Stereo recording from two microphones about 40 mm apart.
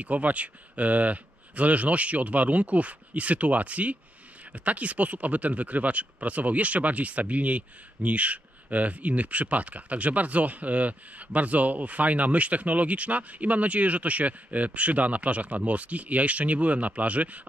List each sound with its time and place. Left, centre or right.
0.0 s speech: right